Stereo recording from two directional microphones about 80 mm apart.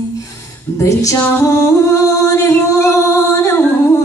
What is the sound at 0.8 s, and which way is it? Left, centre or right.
Music, left.